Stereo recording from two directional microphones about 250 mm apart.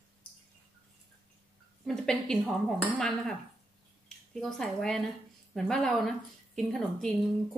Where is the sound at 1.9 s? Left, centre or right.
Centre.